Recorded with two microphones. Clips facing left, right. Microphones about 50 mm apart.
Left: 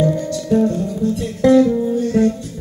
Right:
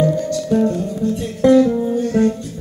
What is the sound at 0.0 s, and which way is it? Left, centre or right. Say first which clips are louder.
Music: right 1 dB; centre.